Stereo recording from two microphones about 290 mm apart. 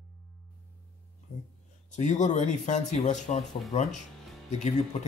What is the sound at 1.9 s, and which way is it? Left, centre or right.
Speech, left.